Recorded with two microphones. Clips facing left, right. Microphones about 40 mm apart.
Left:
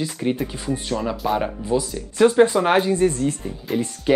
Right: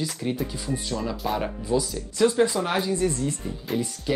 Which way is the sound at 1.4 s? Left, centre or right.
Centre.